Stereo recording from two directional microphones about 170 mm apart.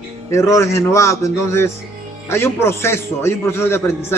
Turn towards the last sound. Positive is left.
turn(degrees=15)  # may be behind; listen again after turning